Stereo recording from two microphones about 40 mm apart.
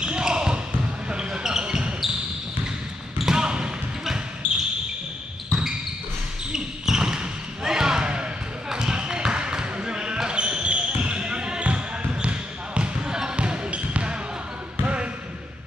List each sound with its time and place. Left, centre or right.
0.0 s basketball bounce: right
3.2 s basketball bounce: centre
13.4 s basketball bounce: right